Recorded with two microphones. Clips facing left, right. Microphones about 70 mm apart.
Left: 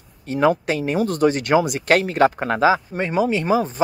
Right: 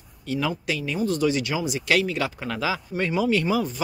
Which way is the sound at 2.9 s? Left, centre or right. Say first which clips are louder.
Left 3 dB; left.